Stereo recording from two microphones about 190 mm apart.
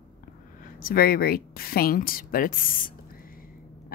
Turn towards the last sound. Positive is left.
turn(degrees=50)  # may be behind; listen again after turning